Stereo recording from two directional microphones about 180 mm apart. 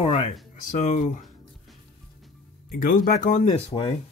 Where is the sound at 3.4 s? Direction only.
30° left (ahead or behind).